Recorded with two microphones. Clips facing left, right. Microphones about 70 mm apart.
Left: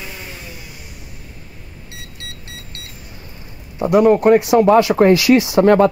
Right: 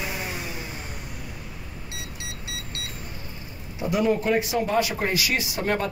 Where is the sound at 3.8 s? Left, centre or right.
Left.